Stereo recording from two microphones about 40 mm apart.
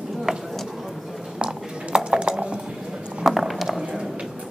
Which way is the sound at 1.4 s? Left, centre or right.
Right.